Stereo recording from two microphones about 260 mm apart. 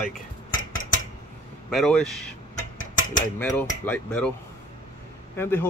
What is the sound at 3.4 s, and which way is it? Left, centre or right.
Speech, centre.